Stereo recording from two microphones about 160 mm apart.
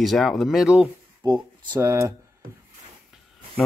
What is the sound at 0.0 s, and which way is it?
Speech, centre (ahead or behind).